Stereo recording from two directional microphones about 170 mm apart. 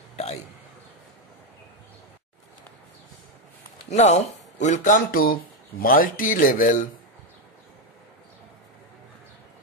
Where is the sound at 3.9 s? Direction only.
40° left (ahead or behind).